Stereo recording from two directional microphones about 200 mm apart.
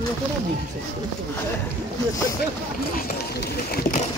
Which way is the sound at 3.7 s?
40° left (ahead or behind).